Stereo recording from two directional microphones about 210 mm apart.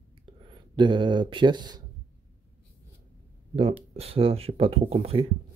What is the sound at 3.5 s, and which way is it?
Speech, 25° right (ahead or behind).